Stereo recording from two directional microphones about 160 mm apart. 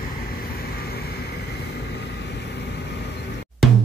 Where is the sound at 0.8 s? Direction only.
80° left.